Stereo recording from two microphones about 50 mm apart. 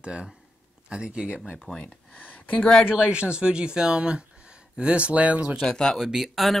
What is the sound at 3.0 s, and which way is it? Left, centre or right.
Speech, centre.